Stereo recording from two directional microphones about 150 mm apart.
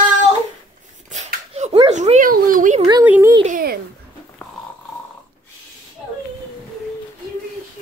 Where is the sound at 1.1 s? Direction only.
50° right (ahead or behind).